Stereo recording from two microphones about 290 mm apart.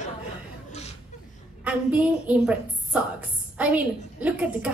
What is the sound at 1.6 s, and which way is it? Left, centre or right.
A woman's voice, centre.